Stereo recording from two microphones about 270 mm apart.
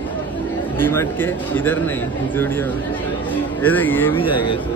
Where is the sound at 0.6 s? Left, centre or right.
Centre.